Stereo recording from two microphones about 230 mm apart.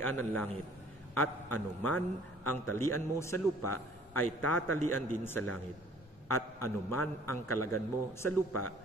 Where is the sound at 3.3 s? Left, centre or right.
Left.